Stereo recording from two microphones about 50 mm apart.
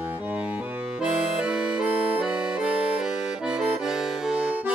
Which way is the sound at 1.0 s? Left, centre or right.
Right.